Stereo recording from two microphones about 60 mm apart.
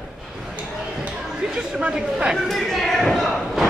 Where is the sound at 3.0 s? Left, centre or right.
Centre.